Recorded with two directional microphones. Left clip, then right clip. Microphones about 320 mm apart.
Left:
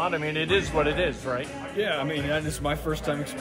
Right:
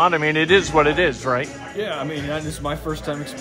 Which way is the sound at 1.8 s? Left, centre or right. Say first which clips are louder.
Right 1 dB; centre.